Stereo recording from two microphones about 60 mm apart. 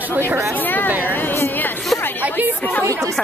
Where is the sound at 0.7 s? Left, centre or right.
Left.